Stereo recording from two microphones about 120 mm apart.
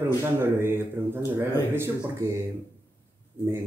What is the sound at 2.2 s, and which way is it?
Speech, 25° right (ahead or behind).